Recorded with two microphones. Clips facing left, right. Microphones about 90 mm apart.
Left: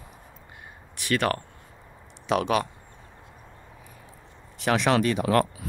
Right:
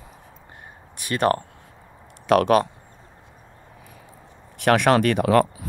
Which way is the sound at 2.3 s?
50° right (ahead or behind).